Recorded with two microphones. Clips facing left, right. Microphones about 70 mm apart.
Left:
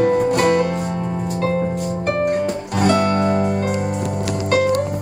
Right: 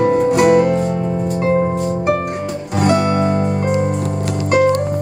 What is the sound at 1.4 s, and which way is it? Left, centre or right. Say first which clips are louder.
Music: right 4 dB; right.